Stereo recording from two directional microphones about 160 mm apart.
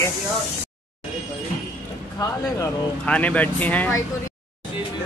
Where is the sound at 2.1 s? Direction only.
20° left (ahead or behind).